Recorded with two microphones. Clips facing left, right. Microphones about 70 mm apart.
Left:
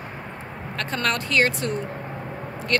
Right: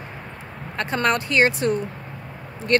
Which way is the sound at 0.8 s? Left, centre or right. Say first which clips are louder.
Right 4 dB; right.